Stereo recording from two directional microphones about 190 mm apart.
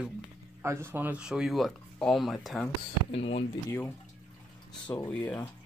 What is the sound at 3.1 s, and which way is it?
Speech, 30° left (ahead or behind).